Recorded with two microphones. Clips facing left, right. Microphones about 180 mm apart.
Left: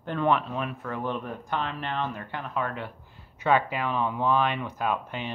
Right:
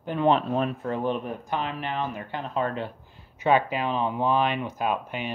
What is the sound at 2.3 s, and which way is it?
Speech, 25° right (ahead or behind).